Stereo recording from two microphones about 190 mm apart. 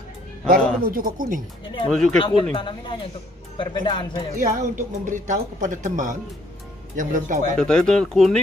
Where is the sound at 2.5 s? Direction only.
25° left (ahead or behind).